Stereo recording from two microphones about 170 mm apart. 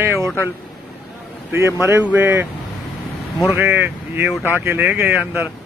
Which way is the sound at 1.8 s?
15° right (ahead or behind).